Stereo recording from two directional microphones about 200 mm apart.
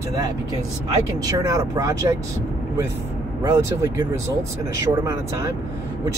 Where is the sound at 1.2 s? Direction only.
15° right (ahead or behind).